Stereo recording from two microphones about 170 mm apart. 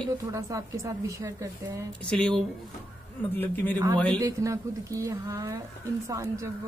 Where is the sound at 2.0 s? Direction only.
5° left (ahead or behind).